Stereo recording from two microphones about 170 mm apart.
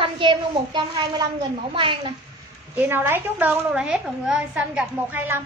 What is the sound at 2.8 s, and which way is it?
A woman's voice, 10° right (ahead or behind).